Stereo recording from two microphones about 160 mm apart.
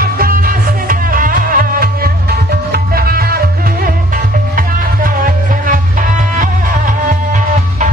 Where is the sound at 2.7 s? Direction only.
70° right (ahead or behind).